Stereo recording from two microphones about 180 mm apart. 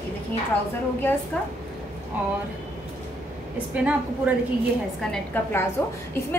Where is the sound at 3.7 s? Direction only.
5° right (ahead or behind).